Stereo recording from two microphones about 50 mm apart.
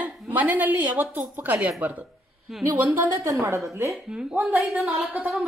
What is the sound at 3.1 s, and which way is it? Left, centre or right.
Speech, right.